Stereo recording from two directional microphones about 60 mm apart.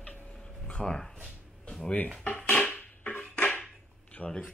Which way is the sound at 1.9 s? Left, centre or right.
Left.